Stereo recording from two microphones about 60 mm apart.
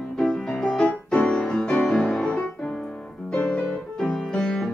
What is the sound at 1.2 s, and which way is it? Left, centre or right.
Music, centre.